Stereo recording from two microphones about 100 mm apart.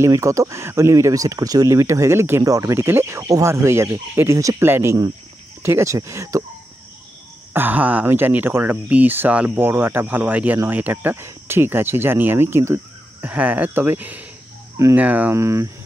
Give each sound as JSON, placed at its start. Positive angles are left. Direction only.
{"t": 0.0, "sound": "speech", "side_deg": -30}
{"t": 4.6, "sound": "speech", "side_deg": -20}
{"t": 7.5, "sound": "speech", "side_deg": -15}
{"t": 13.2, "sound": "speech", "side_deg": -15}
{"t": 15.3, "sound": "speech", "side_deg": -30}